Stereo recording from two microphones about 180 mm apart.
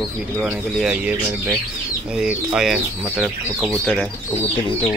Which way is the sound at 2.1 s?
5° right (ahead or behind).